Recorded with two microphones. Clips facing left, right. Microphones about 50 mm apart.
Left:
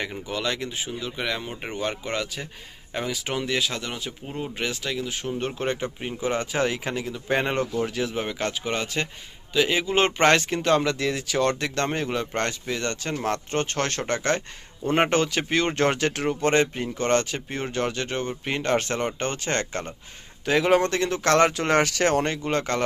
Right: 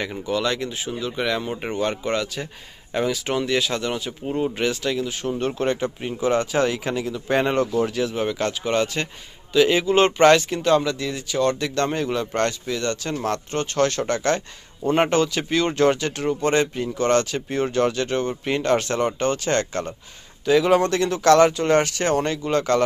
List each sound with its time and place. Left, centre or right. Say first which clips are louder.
0.3 s speech: right 6 dB; centre
2.0 s speech: right 5 dB; centre
10.1 s speech: right 4 dB; left
10.8 s speech: left 1 dB; left
11.6 s speech: right 3 dB; left
14.0 s speech: right 3 dB; left
14.9 s speech: right 2 dB; left
16.1 s speech: right 2 dB; left
16.5 s speech: right 1 dB; left
21.5 s speech: right 3 dB; left
22.1 s speech: right 2 dB; left